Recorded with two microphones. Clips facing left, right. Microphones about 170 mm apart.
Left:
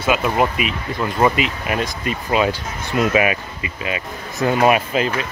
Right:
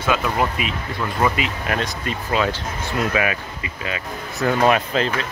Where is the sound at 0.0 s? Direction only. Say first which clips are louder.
Left 3 dB; 15° left (ahead or behind).